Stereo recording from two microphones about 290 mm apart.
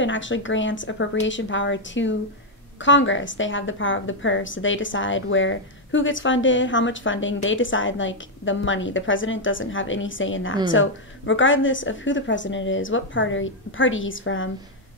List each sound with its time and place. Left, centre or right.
0.0 s a woman's voice: left